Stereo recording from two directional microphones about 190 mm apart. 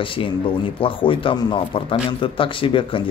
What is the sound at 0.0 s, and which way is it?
Speech, 25° left (ahead or behind).